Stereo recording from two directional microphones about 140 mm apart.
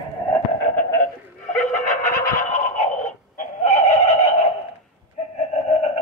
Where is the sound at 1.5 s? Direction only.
65° left (ahead or behind); by 5.9 s 50° left (ahead or behind).